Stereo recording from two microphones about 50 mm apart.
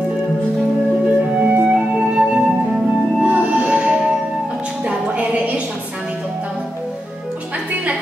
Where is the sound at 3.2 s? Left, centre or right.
Right.